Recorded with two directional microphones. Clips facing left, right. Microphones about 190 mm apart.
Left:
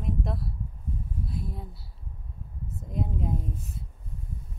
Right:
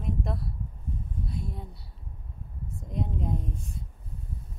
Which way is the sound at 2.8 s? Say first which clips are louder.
Left 1 dB; centre (ahead or behind).